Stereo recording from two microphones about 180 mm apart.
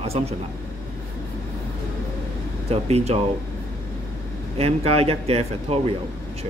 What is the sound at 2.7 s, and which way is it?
Speech, 35° right (ahead or behind).